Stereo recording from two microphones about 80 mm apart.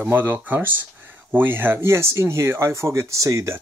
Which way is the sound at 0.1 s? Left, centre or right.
Right.